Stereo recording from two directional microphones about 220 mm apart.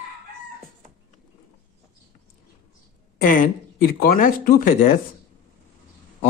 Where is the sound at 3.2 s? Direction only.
40° left (ahead or behind).